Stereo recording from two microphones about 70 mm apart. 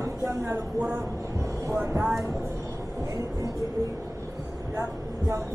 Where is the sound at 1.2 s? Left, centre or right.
Right.